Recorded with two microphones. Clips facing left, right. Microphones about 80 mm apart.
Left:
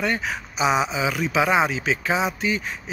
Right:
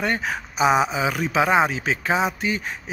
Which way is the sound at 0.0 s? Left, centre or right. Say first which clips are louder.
Right 1 dB; right.